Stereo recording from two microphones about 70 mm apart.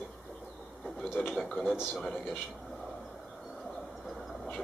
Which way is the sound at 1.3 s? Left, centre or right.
Centre.